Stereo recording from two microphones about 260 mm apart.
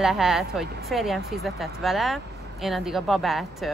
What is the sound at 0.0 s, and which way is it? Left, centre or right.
A woman's voice, centre.